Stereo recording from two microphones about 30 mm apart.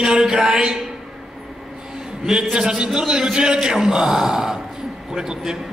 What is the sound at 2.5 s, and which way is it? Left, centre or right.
A man's voice, right.